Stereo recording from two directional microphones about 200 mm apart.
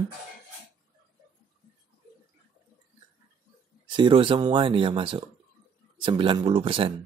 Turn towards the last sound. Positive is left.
turn(degrees=-25)  # may be behind; listen again after turning